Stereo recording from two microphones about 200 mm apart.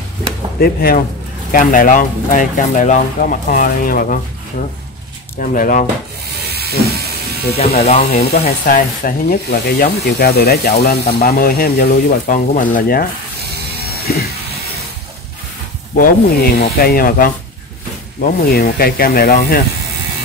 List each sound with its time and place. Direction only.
0.6 s speech: 50° left (ahead or behind)
6.5 s steam: 50° right (ahead or behind)
7.5 s speech: 30° left (ahead or behind)
8.2 s speech: 50° left (ahead or behind)
14.0 s a sound: 50° left (ahead or behind)
16.5 s speech: 50° left (ahead or behind)